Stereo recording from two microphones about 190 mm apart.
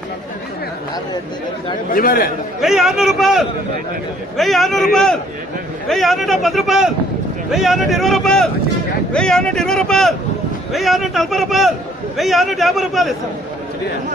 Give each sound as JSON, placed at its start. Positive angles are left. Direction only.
{"t": 1.9, "sound": "a man's voice", "side_deg": 50}
{"t": 2.6, "sound": "speech", "side_deg": 0}